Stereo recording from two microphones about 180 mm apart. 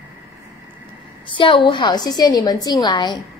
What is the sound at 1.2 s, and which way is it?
A woman's voice, 30° left (ahead or behind).